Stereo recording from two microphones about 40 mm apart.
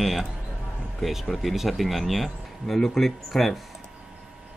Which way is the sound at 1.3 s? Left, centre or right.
Centre.